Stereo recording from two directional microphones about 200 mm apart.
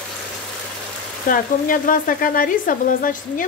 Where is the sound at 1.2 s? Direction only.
45° left (ahead or behind).